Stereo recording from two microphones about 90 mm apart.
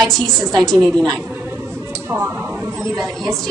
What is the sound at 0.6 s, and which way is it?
Speech, 5° left (ahead or behind).